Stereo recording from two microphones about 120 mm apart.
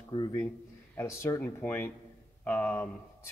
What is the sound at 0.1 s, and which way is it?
Speech, 40° left (ahead or behind).